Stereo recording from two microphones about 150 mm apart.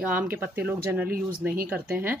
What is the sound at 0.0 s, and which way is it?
Speech, 10° right (ahead or behind).